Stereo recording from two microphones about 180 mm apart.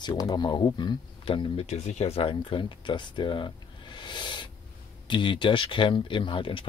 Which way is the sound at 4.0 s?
25° left (ahead or behind).